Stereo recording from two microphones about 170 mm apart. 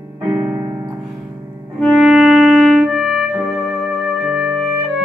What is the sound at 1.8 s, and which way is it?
Music, centre (ahead or behind).